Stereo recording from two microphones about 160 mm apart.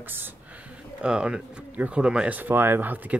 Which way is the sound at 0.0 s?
10° right (ahead or behind).